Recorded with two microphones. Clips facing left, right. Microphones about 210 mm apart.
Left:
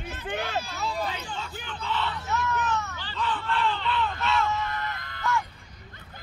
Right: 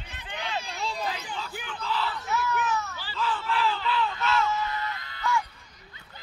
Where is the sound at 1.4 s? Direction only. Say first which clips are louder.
Even; 5° right (ahead or behind).